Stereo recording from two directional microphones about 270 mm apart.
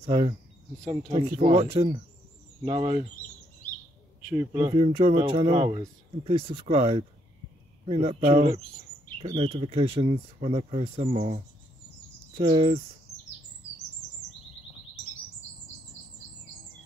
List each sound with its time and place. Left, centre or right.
0.0 s speech: right
4.3 s speech: centre
4.6 s speech: right